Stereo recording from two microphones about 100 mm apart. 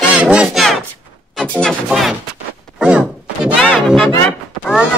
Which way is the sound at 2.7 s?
10° right (ahead or behind).